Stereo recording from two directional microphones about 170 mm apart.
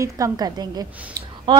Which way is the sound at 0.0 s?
20° right (ahead or behind).